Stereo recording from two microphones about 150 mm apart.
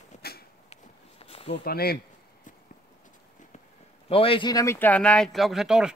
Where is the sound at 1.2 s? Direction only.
40° left (ahead or behind).